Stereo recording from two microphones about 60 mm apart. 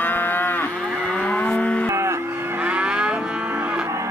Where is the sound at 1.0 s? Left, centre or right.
Centre.